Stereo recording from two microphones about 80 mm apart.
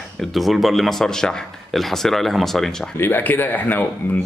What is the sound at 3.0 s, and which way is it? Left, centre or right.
Speech, left.